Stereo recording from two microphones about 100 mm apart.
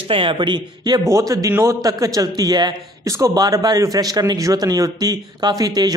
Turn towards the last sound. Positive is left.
turn(degrees=-40)  # may be behind; listen again after turning